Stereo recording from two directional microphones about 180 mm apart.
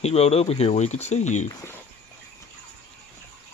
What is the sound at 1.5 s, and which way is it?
Speech, 15° left (ahead or behind).